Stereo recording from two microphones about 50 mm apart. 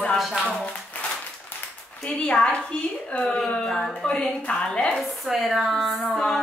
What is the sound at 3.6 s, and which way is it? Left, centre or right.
Speech, centre.